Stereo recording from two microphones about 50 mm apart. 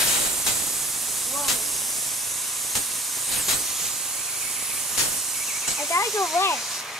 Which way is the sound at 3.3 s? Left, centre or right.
Centre.